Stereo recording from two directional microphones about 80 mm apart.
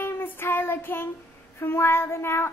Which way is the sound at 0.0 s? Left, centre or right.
Left.